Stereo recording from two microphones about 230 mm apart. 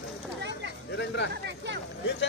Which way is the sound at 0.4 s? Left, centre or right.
Right.